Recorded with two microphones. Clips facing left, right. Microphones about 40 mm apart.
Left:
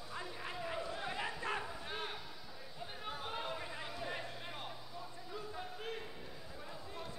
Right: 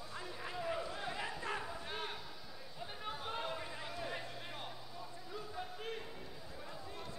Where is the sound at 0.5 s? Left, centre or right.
Centre.